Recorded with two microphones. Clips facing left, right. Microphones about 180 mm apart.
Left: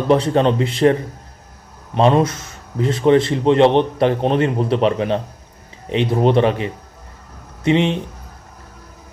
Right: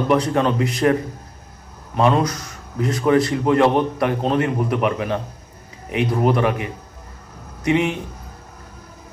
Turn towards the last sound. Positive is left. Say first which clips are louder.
# left 3 dB
turn(degrees=25)  # may be behind; listen again after turning